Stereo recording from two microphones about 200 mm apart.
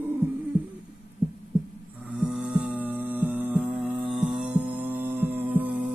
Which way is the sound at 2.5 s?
10° right (ahead or behind).